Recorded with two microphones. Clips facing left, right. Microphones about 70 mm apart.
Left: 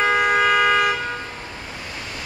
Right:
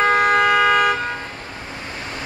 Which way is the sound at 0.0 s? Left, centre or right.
Centre.